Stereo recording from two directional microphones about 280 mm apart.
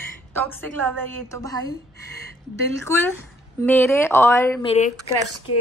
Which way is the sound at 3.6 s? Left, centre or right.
Centre.